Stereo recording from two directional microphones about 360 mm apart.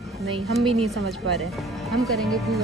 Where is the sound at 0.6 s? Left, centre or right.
Centre.